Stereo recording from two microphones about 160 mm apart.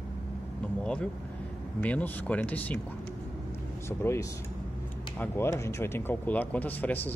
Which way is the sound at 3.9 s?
15° left (ahead or behind).